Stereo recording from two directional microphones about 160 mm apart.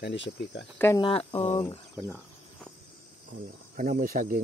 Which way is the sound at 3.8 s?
55° right (ahead or behind).